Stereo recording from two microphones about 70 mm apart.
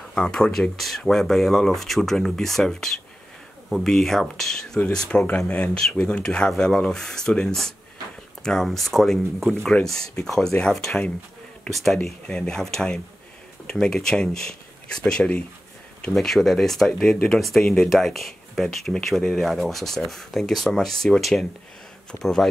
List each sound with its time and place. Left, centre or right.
0.1 s speech: centre